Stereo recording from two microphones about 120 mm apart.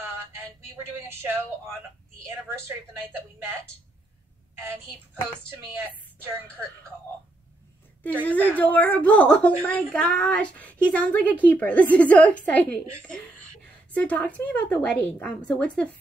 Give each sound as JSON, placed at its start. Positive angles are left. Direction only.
{"t": 1.0, "sound": "a woman's voice", "side_deg": -20}
{"t": 8.3, "sound": "a woman's voice", "side_deg": 15}
{"t": 13.9, "sound": "a woman's voice", "side_deg": 10}